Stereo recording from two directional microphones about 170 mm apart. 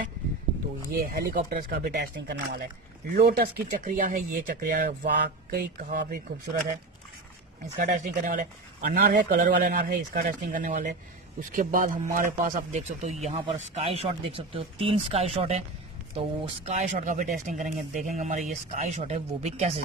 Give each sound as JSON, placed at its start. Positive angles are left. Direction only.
{"t": 1.3, "sound": "speech", "side_deg": -55}
{"t": 3.2, "sound": "speech", "side_deg": -60}
{"t": 5.0, "sound": "speech", "side_deg": -80}
{"t": 5.9, "sound": "speech", "side_deg": -65}
{"t": 7.8, "sound": "speech", "side_deg": -50}
{"t": 9.4, "sound": "speech", "side_deg": -50}
{"t": 9.8, "sound": "speech", "side_deg": -60}